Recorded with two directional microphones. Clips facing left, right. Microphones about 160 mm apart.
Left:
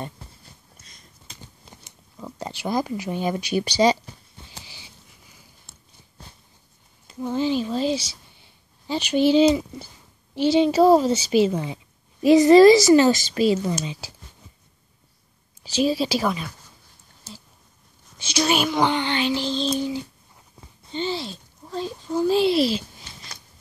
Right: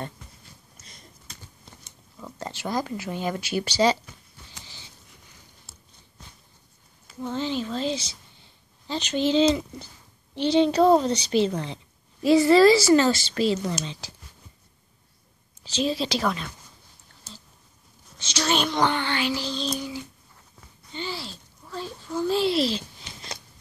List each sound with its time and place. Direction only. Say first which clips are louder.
0.2 s a sound: left 3 dB; 35° left (ahead or behind)
1.9 s speech: left 4 dB; 15° left (ahead or behind)
7.2 s speech: left 5 dB; 10° left (ahead or behind)
15.6 s speech: left 4 dB; 10° left (ahead or behind)
18.2 s speech: left 3 dB; 10° left (ahead or behind)
20.6 s a sound: left 7 dB; 25° left (ahead or behind)
21.7 s speech: left 5 dB; 20° left (ahead or behind)